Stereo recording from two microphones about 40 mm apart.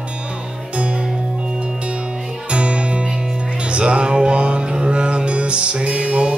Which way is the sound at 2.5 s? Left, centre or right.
Right.